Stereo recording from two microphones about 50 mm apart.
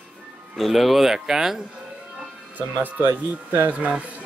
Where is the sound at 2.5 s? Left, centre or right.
Right.